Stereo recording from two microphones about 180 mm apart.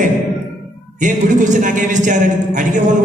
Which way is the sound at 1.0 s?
45° right (ahead or behind).